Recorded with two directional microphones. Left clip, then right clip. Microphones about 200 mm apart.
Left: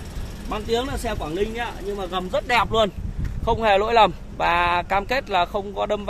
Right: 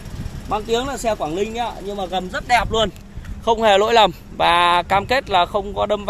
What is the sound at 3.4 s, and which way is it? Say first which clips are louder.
Speech: right 4 dB; 35° right (ahead or behind).